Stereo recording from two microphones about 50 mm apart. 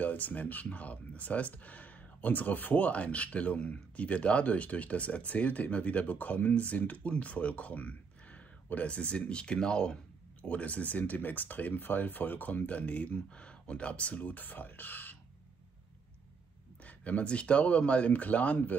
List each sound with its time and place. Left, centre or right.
0.0 s speech: left; by 9.9 s centre
10.4 s speech: left
16.8 s speech: left